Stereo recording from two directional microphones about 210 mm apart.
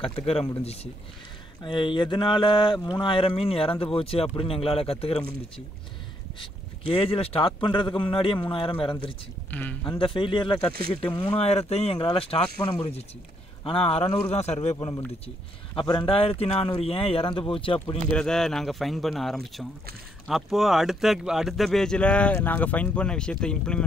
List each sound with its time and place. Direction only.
1.6 s speech: 20° left (ahead or behind)
6.4 s speech: 25° left (ahead or behind)
9.5 s speech: 10° left (ahead or behind)
9.8 s speech: 25° left (ahead or behind)
13.7 s a man's voice: 25° left (ahead or behind)
18.1 s speech: 5° left (ahead or behind)